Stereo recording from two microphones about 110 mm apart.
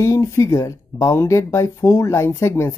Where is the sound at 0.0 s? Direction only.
25° left (ahead or behind).